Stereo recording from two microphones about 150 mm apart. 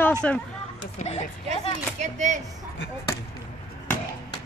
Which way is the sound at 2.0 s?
50° right (ahead or behind).